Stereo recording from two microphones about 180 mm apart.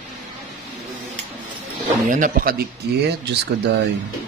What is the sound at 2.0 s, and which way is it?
Speech, 50° right (ahead or behind).